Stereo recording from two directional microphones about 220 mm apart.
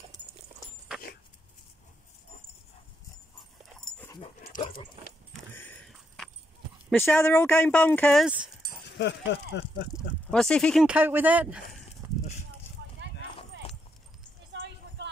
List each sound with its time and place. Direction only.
5.5 s a sound: 10° left (ahead or behind)
6.9 s speech: 10° left (ahead or behind)
8.8 s speech: 50° left (ahead or behind)
10.3 s speech: 5° left (ahead or behind)